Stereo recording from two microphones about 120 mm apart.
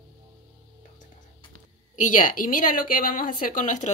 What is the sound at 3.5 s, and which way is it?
Speech, 90° left.